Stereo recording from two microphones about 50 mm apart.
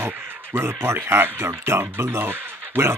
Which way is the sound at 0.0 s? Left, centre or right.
Right.